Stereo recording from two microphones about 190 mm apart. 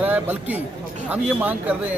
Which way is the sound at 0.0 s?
10° right (ahead or behind).